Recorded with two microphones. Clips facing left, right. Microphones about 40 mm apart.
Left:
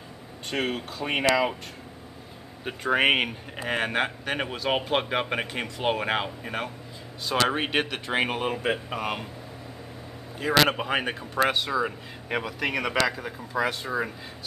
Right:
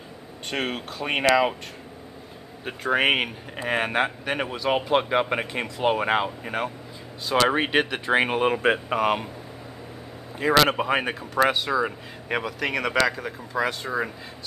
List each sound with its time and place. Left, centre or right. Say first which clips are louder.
0.5 s speech: even; centre
2.6 s speech: right 1 dB; centre
6.4 s speech: right 3 dB; centre
8.4 s speech: right 6 dB; right
10.4 s speech: right 2 dB; centre
10.8 s speech: right 3 dB; centre